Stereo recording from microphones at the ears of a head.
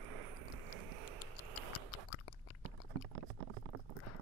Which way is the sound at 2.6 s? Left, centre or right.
Right.